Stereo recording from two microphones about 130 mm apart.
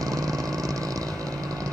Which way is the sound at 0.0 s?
25° right (ahead or behind).